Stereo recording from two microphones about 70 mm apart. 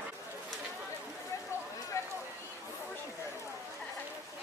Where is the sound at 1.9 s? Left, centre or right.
Left.